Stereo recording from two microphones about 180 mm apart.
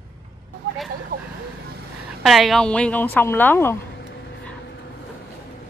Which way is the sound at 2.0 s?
Centre (ahead or behind).